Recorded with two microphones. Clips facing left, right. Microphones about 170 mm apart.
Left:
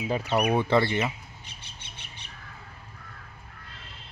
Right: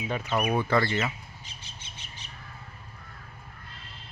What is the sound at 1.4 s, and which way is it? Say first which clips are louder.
Bird: even; 60° left (ahead or behind).